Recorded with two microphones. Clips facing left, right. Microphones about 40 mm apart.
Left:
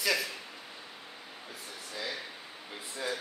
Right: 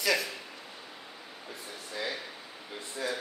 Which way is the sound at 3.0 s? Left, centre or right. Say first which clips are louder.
Right 2 dB; centre.